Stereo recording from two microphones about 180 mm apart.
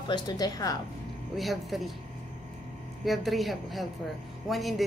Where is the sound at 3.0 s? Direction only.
Centre (ahead or behind).